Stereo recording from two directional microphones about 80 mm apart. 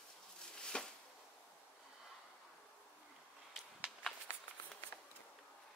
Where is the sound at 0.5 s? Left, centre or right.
Centre.